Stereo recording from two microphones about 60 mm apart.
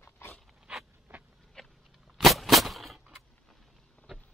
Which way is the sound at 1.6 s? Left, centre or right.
Centre.